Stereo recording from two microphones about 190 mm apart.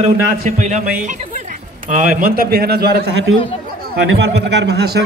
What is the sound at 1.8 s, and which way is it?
A man's voice, 45° right (ahead or behind).